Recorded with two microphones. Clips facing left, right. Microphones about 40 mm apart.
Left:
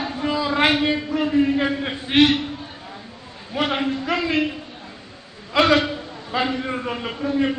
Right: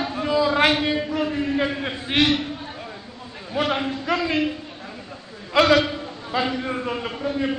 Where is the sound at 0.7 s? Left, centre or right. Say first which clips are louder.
Left 2 dB; centre.